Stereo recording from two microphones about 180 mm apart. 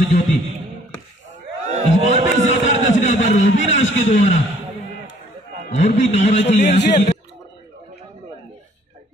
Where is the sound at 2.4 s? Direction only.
40° left (ahead or behind).